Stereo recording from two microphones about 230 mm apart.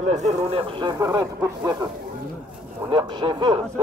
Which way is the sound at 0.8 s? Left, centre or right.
Centre.